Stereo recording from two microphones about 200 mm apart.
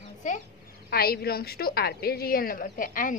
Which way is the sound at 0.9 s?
50° left (ahead or behind).